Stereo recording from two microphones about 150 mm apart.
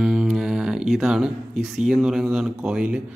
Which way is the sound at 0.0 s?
Centre (ahead or behind).